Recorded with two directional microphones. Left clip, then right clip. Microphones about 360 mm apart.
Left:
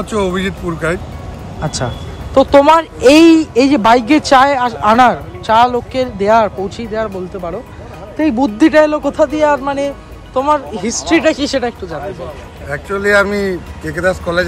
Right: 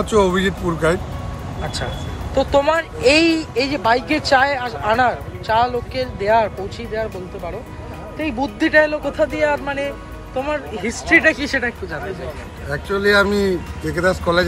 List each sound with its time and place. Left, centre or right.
0.0 s speech: centre
2.3 s speech: centre
8.2 s speech: left
12.6 s speech: centre